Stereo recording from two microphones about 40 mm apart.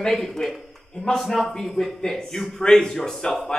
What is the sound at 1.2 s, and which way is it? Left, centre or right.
A man's voice, centre.